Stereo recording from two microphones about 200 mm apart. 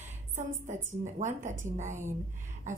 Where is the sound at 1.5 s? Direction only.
40° right (ahead or behind).